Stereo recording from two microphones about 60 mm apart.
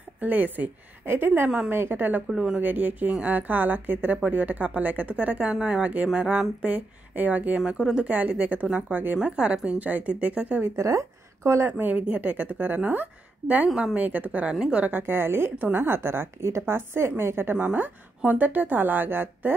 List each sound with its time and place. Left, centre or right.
0.2 s a woman's voice: right
2.2 s speech: centre
2.5 s speech: right
9.8 s speech: right
10.8 s speech: right
11.8 s speech: right
14.5 s speech: centre
15.0 s a woman's voice: right